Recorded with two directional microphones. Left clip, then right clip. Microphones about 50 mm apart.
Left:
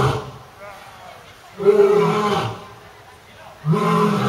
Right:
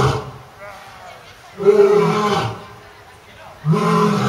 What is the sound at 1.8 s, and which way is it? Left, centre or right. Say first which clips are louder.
Roar: right 2 dB; centre.